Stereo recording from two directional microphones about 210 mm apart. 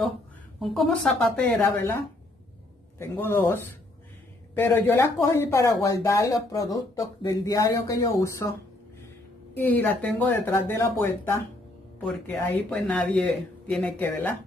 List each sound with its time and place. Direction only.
0.6 s speech: centre (ahead or behind)
3.0 s speech: 10° left (ahead or behind)
9.6 s speech: 10° left (ahead or behind)